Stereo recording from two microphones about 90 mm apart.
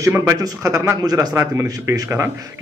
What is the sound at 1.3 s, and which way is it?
Speech, 30° right (ahead or behind).